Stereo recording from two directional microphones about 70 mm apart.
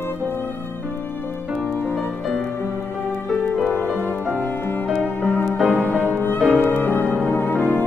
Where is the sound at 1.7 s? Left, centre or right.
Centre.